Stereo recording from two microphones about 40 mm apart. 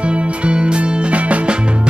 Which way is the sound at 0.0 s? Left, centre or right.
Right.